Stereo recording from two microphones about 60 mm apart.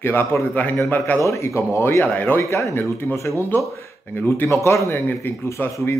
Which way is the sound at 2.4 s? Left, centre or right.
Left.